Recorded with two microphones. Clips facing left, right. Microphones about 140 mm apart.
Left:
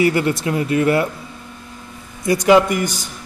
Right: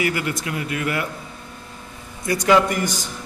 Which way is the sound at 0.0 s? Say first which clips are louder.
Left 7 dB; 30° left (ahead or behind).